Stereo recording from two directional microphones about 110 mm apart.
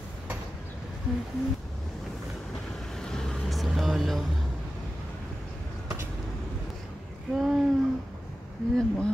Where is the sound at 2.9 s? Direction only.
5° left (ahead or behind).